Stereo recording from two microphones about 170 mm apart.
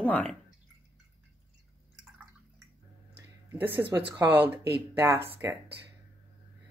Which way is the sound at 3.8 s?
10° right (ahead or behind).